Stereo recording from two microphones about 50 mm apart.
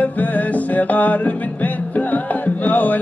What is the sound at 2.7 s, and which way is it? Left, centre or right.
Music, left.